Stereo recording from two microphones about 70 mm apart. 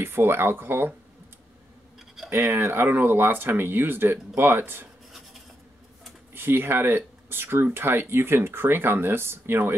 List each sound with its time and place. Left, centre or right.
0.0 s speech: right
2.3 s speech: right
6.3 s speech: right